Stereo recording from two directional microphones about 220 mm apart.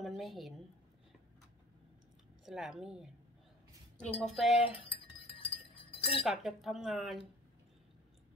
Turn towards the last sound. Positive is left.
turn(degrees=0)  # may be behind; listen again after turning